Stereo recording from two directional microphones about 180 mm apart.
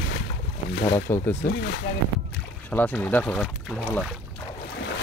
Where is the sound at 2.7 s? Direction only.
10° left (ahead or behind).